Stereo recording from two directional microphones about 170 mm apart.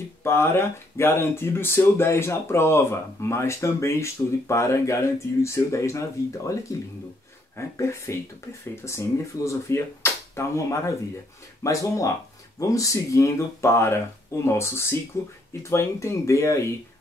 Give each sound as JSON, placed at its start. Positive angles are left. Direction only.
{"t": 0.2, "sound": "speech", "side_deg": 15}
{"t": 7.5, "sound": "speech", "side_deg": 15}